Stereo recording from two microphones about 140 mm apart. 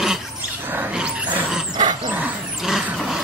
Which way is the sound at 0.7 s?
10° right (ahead or behind).